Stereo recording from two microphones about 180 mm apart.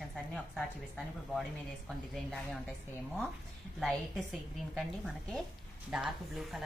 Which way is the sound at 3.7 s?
Centre (ahead or behind).